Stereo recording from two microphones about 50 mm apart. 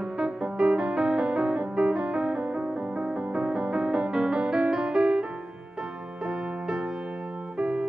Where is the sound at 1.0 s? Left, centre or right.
Centre.